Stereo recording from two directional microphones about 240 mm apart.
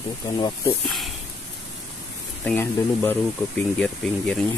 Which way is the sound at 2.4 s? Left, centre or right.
Centre.